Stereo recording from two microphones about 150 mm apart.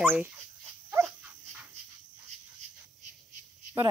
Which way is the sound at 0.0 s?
10° right (ahead or behind).